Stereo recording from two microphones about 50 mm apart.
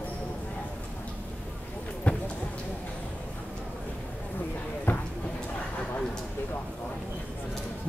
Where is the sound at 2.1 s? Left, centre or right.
Left.